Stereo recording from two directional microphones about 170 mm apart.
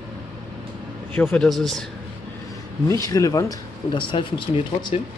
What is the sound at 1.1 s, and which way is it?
Speech, 10° left (ahead or behind).